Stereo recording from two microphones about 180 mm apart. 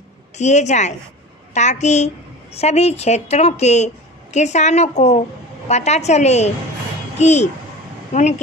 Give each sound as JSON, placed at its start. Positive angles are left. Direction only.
{"t": 0.4, "sound": "a woman's voice", "side_deg": 40}